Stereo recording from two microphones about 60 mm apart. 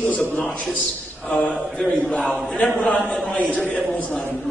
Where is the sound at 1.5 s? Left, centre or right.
Centre.